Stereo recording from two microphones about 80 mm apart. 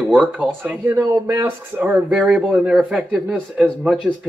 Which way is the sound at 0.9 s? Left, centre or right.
Right.